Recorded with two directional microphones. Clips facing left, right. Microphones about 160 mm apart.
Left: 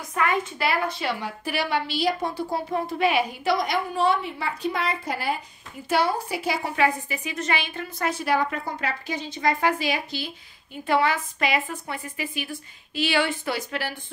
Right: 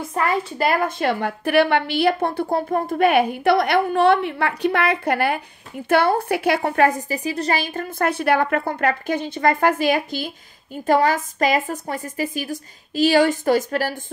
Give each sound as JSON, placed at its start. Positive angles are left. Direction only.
{"t": 0.0, "sound": "a woman's voice", "side_deg": -35}